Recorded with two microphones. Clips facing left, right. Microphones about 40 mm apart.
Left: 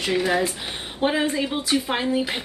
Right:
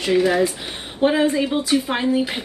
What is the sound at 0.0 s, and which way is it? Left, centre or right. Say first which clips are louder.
Speech: right 4 dB; centre.